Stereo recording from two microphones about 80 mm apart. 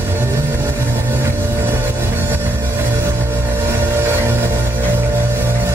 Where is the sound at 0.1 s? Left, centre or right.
Right.